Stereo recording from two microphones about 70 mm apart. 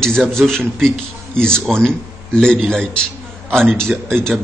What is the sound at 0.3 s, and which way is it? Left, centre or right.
A man's voice, centre.